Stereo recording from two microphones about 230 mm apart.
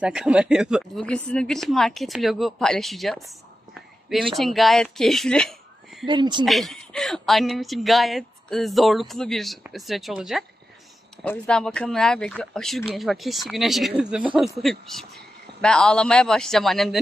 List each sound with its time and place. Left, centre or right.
0.0 s speech: centre
4.4 s speech: centre
6.0 s speech: centre
6.4 s speech: centre